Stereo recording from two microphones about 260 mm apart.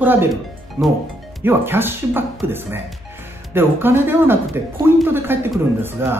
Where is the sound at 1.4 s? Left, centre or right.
Centre.